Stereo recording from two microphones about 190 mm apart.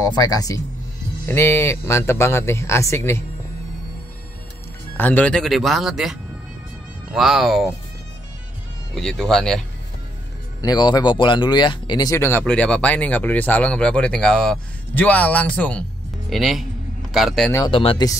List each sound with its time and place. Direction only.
0.0 s speech: 20° left (ahead or behind)
4.9 s speech: 10° left (ahead or behind)
8.9 s speech: 5° left (ahead or behind)
10.6 s speech: 20° left (ahead or behind); by 17.5 s centre (ahead or behind)
17.6 s speech: 25° left (ahead or behind)